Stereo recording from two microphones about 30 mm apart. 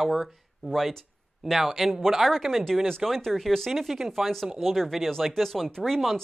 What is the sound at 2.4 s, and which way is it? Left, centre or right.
Speech, right.